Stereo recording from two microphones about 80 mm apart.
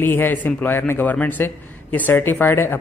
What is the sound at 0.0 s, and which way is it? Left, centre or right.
Speech, left.